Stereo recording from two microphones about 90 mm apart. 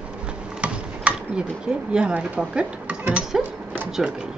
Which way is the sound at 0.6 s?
15° right (ahead or behind).